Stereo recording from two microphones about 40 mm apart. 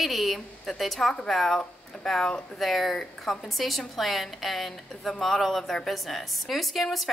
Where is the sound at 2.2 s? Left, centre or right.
Centre.